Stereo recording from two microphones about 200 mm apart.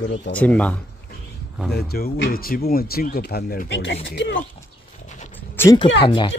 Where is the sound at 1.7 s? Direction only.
55° left (ahead or behind).